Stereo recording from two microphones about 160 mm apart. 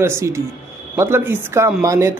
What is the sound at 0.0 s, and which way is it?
A man's voice, 15° right (ahead or behind).